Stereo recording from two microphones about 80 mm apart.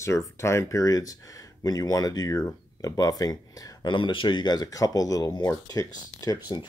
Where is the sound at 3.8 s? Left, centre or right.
Left.